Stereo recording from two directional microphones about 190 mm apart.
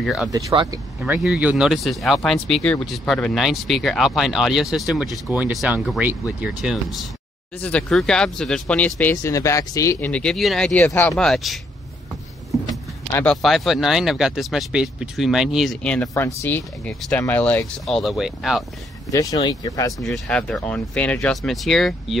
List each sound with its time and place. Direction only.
0.0 s speech: centre (ahead or behind)
0.5 s speech: 25° right (ahead or behind)
1.0 s speech: 5° right (ahead or behind)
13.1 s speech: 5° left (ahead or behind)
19.1 s speech: 20° left (ahead or behind)
20.1 s speech: 5° left (ahead or behind)